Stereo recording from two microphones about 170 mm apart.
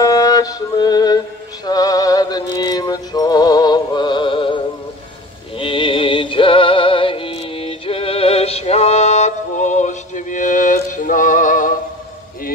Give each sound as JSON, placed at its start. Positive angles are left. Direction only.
{"t": 0.0, "sound": "music", "side_deg": 20}
{"t": 5.6, "sound": "music", "side_deg": 30}